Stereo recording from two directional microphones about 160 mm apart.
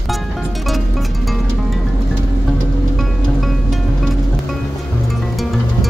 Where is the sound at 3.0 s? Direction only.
Centre (ahead or behind).